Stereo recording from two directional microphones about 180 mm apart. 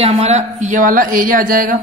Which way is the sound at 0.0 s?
35° right (ahead or behind).